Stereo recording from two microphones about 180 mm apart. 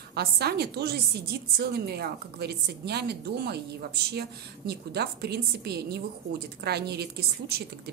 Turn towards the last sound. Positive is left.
turn(degrees=-60)  # may be behind; listen again after turning